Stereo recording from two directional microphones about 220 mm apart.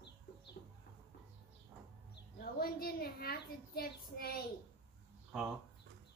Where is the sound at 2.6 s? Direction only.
45° left (ahead or behind).